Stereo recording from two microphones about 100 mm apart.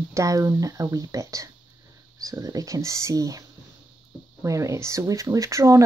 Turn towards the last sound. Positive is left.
turn(degrees=-30)  # may be behind; listen again after turning